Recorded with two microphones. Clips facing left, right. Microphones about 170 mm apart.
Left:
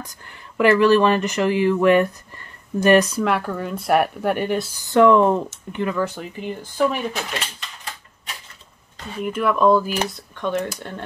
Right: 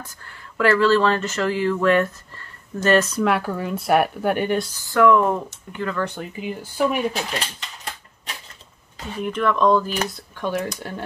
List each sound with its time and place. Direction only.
0.0 s speech: 15° left (ahead or behind)
3.2 s speech: centre (ahead or behind)
4.7 s speech: 20° left (ahead or behind)
5.9 s speech: centre (ahead or behind)
8.9 s speech: centre (ahead or behind)